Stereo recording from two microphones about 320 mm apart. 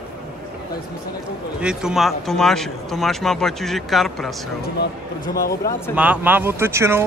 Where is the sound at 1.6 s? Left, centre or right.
Centre.